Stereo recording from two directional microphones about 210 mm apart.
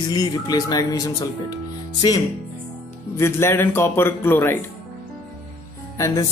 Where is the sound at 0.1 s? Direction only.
20° left (ahead or behind).